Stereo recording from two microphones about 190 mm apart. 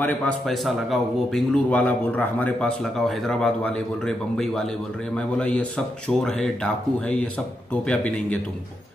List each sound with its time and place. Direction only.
0.0 s a man's voice: centre (ahead or behind)